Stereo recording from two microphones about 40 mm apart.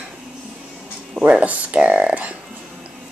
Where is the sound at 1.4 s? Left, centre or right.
Right.